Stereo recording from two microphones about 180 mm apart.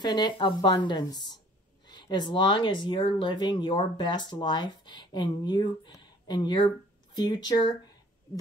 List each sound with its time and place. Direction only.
0.0 s speech: 25° left (ahead or behind)